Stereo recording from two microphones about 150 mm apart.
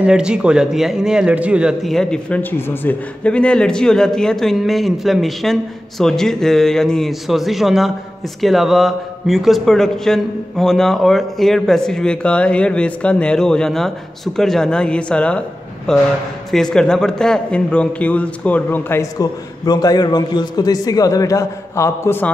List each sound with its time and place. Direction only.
0.0 s a man's voice: 5° right (ahead or behind); by 22.3 s 15° left (ahead or behind)